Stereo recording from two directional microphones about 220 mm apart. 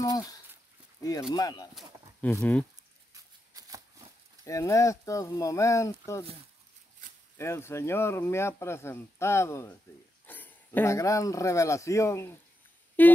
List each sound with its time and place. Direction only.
0.0 s a sound: 15° left (ahead or behind)
1.3 s speech: 15° left (ahead or behind)
3.6 s shuffling cards: 15° right (ahead or behind)
4.5 s speech: 15° left (ahead or behind)
7.3 s speech: 10° left (ahead or behind)